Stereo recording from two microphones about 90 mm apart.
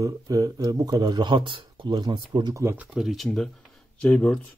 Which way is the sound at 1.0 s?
55° right (ahead or behind).